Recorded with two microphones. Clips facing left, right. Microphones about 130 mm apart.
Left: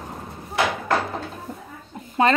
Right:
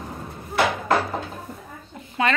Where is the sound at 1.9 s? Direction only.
40° left (ahead or behind).